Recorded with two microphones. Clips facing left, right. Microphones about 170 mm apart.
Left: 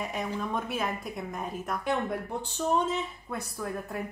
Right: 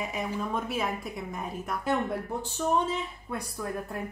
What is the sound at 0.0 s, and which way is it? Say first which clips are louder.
A woman's voice: even; centre (ahead or behind).